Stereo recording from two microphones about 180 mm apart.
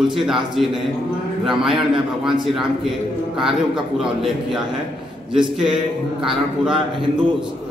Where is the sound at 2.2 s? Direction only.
Centre (ahead or behind).